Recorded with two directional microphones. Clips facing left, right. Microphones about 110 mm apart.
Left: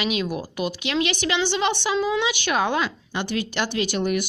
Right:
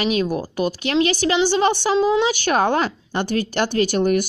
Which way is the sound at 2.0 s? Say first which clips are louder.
Right 6 dB; 30° right (ahead or behind).